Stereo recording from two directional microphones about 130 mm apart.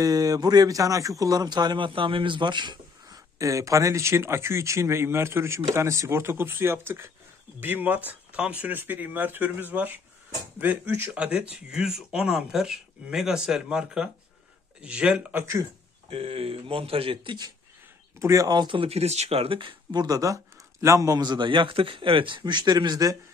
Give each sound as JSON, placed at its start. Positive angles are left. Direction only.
{"t": 0.0, "sound": "a man's voice", "side_deg": -30}
{"t": 3.3, "sound": "speech", "side_deg": -25}
{"t": 16.1, "sound": "speech", "side_deg": -45}
{"t": 18.2, "sound": "a man's voice", "side_deg": -25}